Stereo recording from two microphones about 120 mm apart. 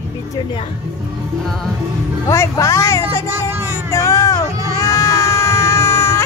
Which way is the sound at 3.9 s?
25° left (ahead or behind).